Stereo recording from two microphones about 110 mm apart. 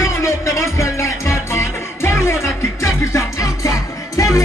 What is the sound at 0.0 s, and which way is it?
Music, 25° left (ahead or behind).